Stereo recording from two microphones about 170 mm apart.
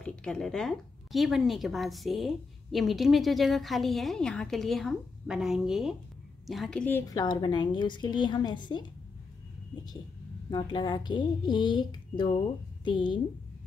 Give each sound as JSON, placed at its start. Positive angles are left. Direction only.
{"t": 0.0, "sound": "a woman's voice", "side_deg": 5}
{"t": 10.5, "sound": "a woman's voice", "side_deg": 25}